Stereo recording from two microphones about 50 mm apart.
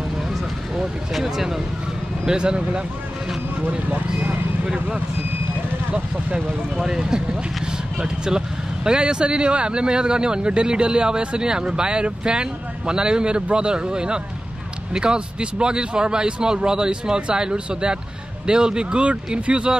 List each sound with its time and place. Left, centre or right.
1.1 s speech: centre
2.2 s speech: centre
6.8 s speech: centre